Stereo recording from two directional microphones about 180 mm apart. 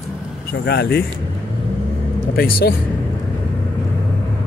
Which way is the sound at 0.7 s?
60° left (ahead or behind).